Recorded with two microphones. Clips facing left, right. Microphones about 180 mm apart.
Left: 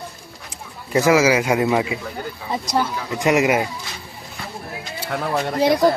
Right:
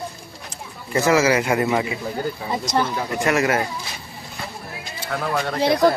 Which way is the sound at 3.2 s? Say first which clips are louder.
Left 3 dB; 15° left (ahead or behind).